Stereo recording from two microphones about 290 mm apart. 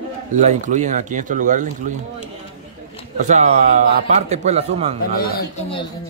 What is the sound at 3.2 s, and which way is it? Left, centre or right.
Speech, right.